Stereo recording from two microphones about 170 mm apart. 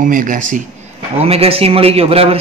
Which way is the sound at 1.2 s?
35° right (ahead or behind).